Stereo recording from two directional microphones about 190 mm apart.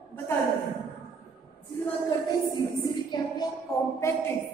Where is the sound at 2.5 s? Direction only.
25° left (ahead or behind).